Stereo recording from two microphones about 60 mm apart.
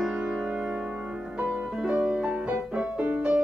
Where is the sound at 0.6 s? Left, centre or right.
Centre.